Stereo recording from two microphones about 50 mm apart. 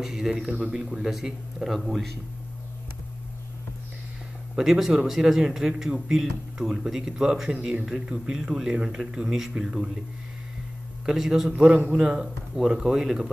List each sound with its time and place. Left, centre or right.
0.0 s speech: centre
4.6 s speech: centre
11.1 s speech: centre